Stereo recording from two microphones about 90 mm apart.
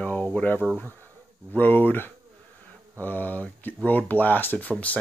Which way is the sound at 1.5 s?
20° left (ahead or behind).